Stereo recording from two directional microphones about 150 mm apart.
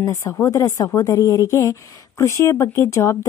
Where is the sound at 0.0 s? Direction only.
20° left (ahead or behind).